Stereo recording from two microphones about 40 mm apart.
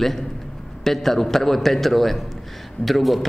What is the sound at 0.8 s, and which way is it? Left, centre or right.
A man's voice, centre.